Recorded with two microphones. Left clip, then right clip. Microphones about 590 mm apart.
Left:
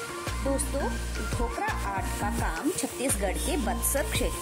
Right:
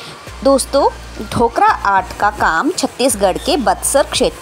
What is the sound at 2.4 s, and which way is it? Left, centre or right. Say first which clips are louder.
Speech: right 16 dB; left.